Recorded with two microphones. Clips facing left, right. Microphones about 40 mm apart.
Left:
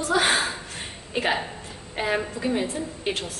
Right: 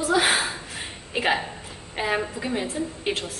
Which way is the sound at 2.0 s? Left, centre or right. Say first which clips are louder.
Even; centre.